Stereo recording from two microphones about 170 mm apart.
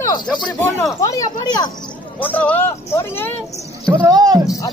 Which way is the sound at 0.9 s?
20° left (ahead or behind).